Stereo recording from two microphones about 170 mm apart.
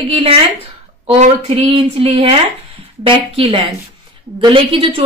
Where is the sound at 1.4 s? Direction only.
35° right (ahead or behind).